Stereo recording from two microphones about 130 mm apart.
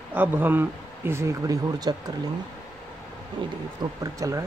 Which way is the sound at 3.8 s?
25° right (ahead or behind).